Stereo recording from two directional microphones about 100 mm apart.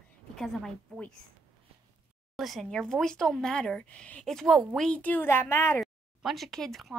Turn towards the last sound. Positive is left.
turn(degrees=0)  # may be behind; listen again after turning